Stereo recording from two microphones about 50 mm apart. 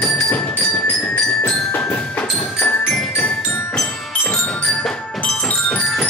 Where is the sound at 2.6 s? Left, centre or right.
Left.